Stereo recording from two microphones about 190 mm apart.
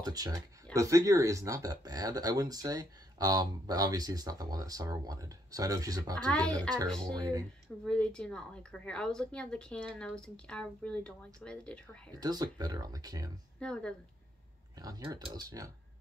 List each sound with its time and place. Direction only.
0.0 s speech: 20° right (ahead or behind)
6.1 s a woman's voice: 5° left (ahead or behind)
7.2 s speech: 20° right (ahead or behind)
7.8 s a woman's voice: 5° left (ahead or behind)
12.2 s speech: 20° right (ahead or behind)
13.6 s a woman's voice: 5° left (ahead or behind)
14.8 s speech: 20° right (ahead or behind)